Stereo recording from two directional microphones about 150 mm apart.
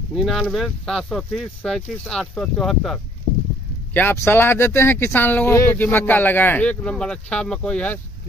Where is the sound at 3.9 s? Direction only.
15° left (ahead or behind).